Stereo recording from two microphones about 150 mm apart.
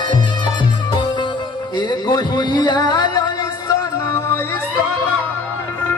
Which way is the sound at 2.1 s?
30° left (ahead or behind).